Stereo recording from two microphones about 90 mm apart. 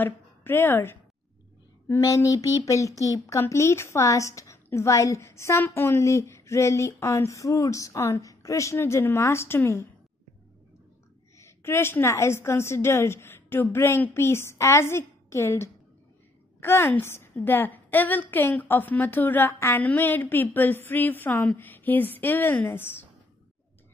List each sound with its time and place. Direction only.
0.0 s a woman's voice: 25° left (ahead or behind)
1.9 s a woman's voice: 40° left (ahead or behind)
11.3 s a woman's voice: 30° left (ahead or behind)